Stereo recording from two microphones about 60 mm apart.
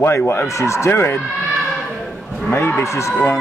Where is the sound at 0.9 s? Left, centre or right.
Left.